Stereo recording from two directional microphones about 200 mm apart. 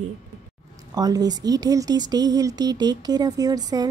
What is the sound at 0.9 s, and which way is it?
Speech, 20° right (ahead or behind).